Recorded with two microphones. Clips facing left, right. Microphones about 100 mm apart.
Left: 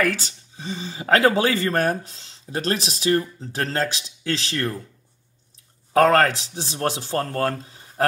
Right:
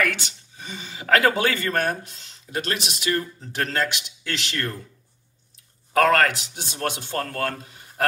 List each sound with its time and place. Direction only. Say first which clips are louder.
0.0 s speech: left 2 dB; 35° left (ahead or behind)
5.9 s speech: left 2 dB; 35° left (ahead or behind)